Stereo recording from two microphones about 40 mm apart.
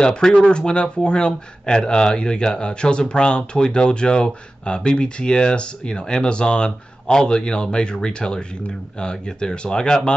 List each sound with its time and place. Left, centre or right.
0.0 s speech: left